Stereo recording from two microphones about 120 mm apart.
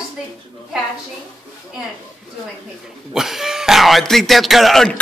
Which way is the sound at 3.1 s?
5° right (ahead or behind).